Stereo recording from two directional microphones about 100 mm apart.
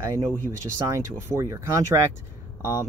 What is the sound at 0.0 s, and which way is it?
Speech, 35° right (ahead or behind).